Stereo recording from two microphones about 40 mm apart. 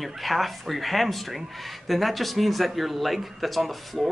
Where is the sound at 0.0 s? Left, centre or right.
Centre.